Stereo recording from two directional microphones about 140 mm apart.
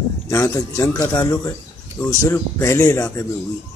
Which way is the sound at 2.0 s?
5° left (ahead or behind).